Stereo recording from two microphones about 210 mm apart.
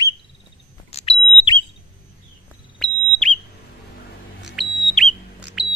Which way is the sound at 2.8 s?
5° left (ahead or behind).